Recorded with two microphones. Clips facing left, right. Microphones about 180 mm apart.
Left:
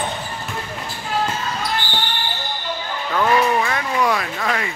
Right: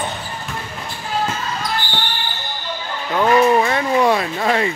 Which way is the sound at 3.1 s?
25° right (ahead or behind).